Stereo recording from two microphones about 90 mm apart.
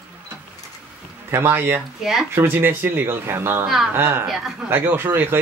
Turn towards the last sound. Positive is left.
turn(degrees=-25)  # may be behind; listen again after turning